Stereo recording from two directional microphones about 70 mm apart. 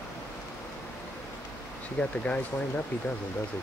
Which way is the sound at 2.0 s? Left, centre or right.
Centre.